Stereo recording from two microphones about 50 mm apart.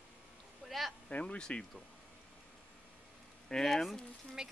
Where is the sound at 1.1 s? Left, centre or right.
Left.